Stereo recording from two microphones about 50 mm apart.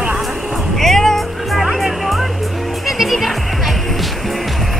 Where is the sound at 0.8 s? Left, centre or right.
Centre.